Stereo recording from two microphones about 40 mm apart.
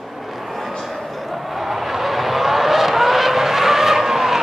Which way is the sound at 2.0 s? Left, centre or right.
Centre.